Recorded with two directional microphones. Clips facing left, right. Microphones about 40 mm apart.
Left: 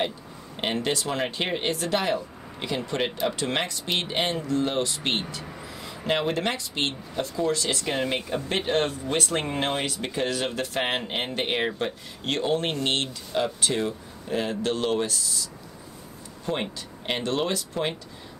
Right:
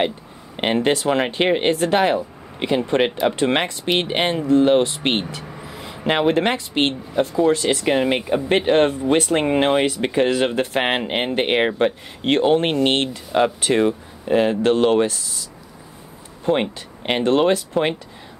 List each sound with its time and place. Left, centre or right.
0.6 s speech: right
5.4 s vehicle: centre
5.7 s vehicle: right
6.0 s speech: right
16.4 s speech: right